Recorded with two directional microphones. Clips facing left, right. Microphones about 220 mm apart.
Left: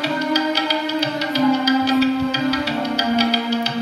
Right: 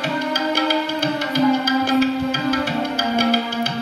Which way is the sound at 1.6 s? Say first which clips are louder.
Left 1 dB; 50° right (ahead or behind).